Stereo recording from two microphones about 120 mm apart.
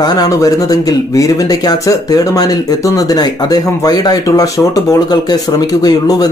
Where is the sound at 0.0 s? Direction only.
35° left (ahead or behind).